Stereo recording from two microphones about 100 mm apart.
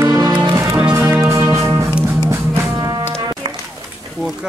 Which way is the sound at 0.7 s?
15° right (ahead or behind).